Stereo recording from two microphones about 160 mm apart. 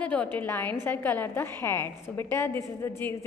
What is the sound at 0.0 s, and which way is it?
A woman's voice, 10° left (ahead or behind).